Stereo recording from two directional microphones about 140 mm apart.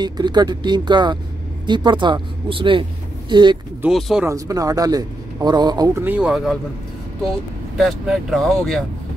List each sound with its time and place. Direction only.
0.0 s speech: 30° right (ahead or behind)
3.9 s speech: 5° right (ahead or behind)
4.3 s a man's voice: 25° right (ahead or behind)
5.9 s speech: 10° right (ahead or behind)
7.7 s speech: centre (ahead or behind)